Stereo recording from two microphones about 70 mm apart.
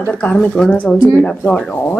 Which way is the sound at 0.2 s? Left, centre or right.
Centre.